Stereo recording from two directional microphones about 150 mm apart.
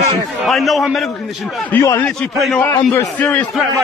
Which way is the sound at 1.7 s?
20° left (ahead or behind).